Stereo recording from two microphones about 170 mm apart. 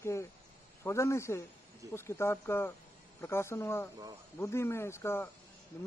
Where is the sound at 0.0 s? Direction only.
15° left (ahead or behind).